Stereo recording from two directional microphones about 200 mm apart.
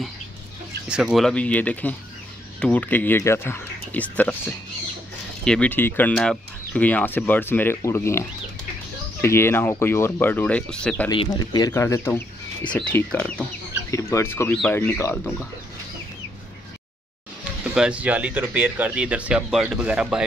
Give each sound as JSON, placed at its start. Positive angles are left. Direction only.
{"t": 0.8, "sound": "speech", "side_deg": -5}
{"t": 11.1, "sound": "speech", "side_deg": 20}
{"t": 17.7, "sound": "speech", "side_deg": -5}